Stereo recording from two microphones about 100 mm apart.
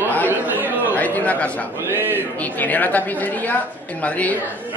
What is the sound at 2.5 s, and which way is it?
A woman's voice, 15° left (ahead or behind).